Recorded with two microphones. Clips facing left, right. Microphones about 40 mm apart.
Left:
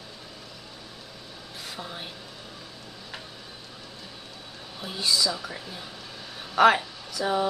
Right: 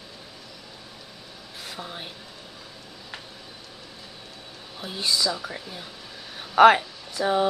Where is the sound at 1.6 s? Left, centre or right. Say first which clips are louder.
Right 1 dB; centre.